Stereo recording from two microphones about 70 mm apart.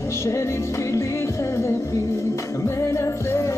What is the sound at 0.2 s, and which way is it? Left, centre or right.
Music, left.